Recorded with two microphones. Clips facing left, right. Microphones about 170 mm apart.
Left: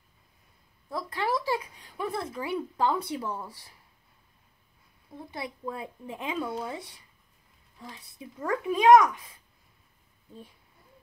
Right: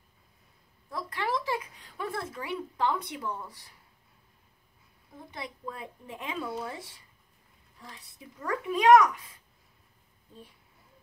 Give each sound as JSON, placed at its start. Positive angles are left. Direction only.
{"t": 0.8, "sound": "a sound", "side_deg": 25}
{"t": 2.0, "sound": "a child's voice", "side_deg": 20}
{"t": 5.3, "sound": "a child's voice", "side_deg": 30}
{"t": 6.4, "sound": "speech", "side_deg": 0}
{"t": 7.9, "sound": "a child's voice", "side_deg": 25}